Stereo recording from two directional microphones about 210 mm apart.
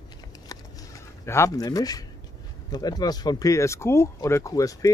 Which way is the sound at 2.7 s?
20° left (ahead or behind).